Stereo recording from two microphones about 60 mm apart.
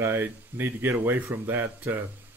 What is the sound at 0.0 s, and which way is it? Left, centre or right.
Speech, right.